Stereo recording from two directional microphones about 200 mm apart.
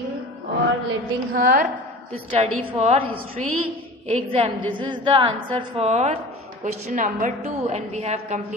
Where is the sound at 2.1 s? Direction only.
30° right (ahead or behind).